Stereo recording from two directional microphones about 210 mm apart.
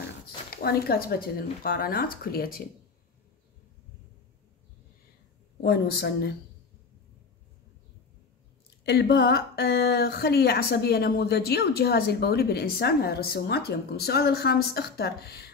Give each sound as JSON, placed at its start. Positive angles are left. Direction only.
{"t": 0.6, "sound": "speech", "side_deg": 45}
{"t": 5.6, "sound": "speech", "side_deg": 50}
{"t": 8.8, "sound": "speech", "side_deg": 50}